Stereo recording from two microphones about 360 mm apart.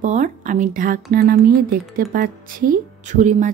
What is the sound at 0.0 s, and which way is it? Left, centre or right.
A woman's voice, centre.